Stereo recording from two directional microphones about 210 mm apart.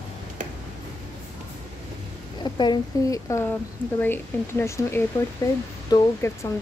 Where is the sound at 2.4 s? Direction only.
20° left (ahead or behind).